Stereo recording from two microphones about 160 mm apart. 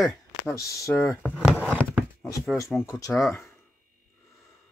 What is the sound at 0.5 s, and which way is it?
Speech, 15° left (ahead or behind).